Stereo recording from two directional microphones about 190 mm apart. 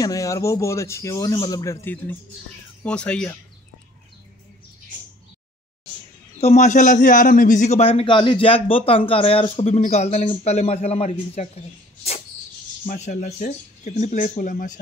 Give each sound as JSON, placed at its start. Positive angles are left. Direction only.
{"t": 0.0, "sound": "speech", "side_deg": 15}
{"t": 6.4, "sound": "a man's voice", "side_deg": 35}